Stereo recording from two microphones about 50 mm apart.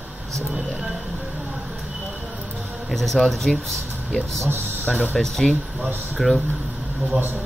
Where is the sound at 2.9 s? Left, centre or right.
Centre.